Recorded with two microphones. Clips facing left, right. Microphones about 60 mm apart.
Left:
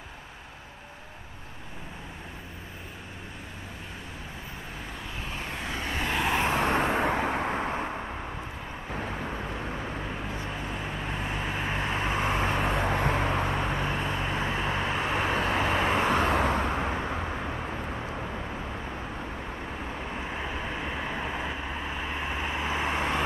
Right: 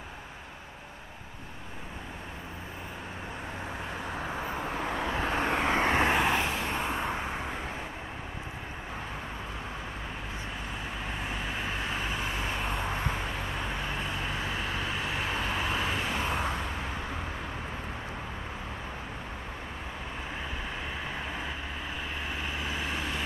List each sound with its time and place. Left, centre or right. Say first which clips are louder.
4.8 s vehicle: right 9 dB; right
6.6 s vehicle: left 6 dB; left
11.5 s vehicle: left 4 dB; centre
12.2 s vehicle: left 6 dB; left
12.6 s vehicle: left 5 dB; left
13.7 s vehicle: left 4 dB; left
15.0 s vehicle: left 6 dB; left
20.8 s vehicle: left 4 dB; centre; by 23.2 s left